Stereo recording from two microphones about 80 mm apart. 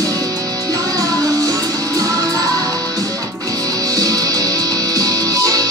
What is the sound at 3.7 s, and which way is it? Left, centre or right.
Music, right.